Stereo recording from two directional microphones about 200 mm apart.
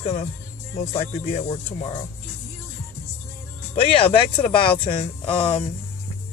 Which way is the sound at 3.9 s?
25° left (ahead or behind).